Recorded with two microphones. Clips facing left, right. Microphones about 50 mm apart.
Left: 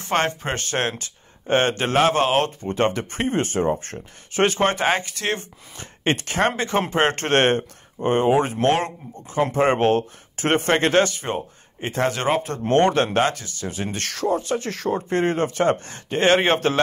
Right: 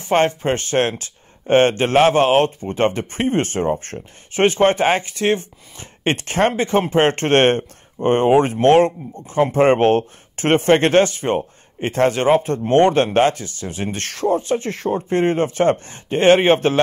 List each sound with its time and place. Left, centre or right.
0.1 s speech: centre
0.5 s a man's voice: right
3.2 s a man's voice: right